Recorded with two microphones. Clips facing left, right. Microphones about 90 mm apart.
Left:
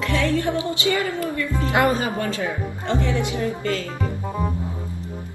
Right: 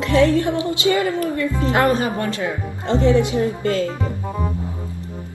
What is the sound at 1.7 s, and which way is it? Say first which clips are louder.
Speech: right 1 dB; 20° left (ahead or behind).